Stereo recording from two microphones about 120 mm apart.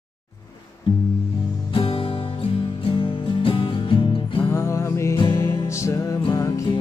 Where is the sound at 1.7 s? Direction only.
50° left (ahead or behind).